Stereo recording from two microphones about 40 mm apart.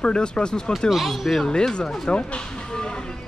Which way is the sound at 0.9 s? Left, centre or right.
Centre.